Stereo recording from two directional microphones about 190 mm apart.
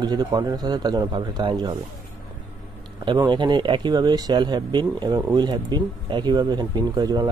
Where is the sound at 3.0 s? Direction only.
25° right (ahead or behind).